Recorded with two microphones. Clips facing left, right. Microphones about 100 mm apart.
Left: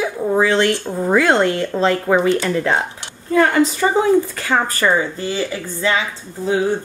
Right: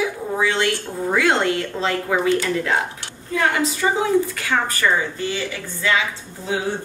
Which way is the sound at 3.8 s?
45° left (ahead or behind).